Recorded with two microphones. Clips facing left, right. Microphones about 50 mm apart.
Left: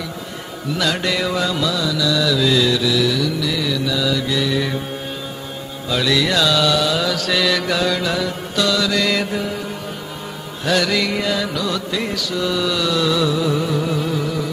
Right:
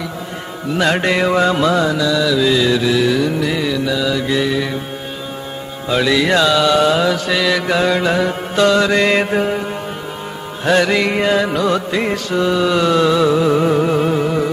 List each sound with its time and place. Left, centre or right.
0.7 s music: right
2.0 s mantra: centre; by 3.6 s right
3.6 s mantra: right
5.9 s mantra: right
6.8 s music: right
10.6 s music: right